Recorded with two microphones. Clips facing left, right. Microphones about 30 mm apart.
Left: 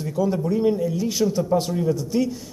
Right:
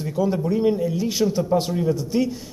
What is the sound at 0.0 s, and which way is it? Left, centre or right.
Speech, right.